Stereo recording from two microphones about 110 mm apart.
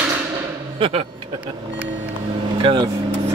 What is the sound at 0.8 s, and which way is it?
Speech, 60° right (ahead or behind).